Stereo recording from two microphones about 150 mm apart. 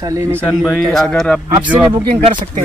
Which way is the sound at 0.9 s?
5° left (ahead or behind).